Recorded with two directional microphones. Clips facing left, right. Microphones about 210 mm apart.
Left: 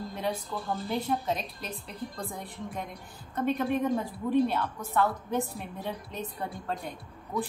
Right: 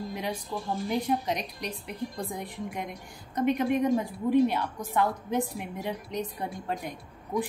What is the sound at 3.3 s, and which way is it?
A woman's voice, 10° right (ahead or behind).